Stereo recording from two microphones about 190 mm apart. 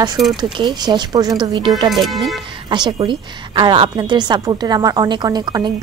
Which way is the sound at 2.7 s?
25° right (ahead or behind).